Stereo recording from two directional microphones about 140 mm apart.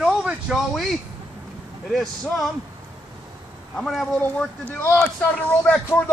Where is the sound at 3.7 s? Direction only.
5° left (ahead or behind).